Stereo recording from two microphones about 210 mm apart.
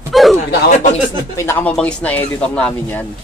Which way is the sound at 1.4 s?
10° left (ahead or behind).